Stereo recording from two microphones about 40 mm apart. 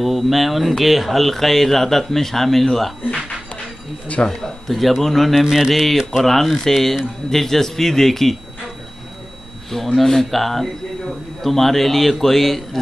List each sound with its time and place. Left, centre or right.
0.0 s speech: centre
4.1 s speech: left
4.6 s speech: centre
5.4 s mantra: centre
5.7 s a man's voice: centre
9.7 s speech: centre